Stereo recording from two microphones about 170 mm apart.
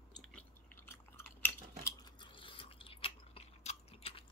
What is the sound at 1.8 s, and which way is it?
Chewing, 25° left (ahead or behind).